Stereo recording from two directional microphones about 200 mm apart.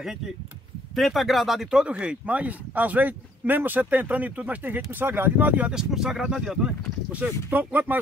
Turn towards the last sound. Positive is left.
turn(degrees=-10)  # may be behind; listen again after turning